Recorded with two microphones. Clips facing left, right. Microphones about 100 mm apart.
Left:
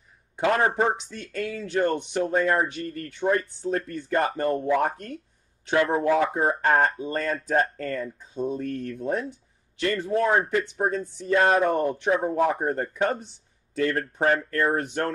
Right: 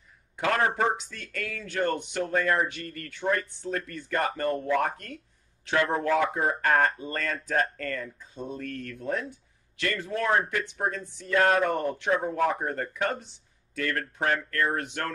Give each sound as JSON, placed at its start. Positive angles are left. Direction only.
{"t": 0.4, "sound": "speech", "side_deg": 25}
{"t": 6.3, "sound": "speech", "side_deg": 25}
{"t": 12.4, "sound": "speech", "side_deg": 20}
{"t": 12.6, "sound": "speech", "side_deg": 30}